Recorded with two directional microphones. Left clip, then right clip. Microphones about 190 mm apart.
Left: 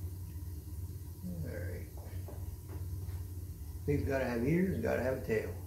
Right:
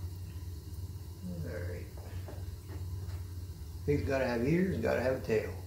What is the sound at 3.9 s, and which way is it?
Speech, 15° right (ahead or behind).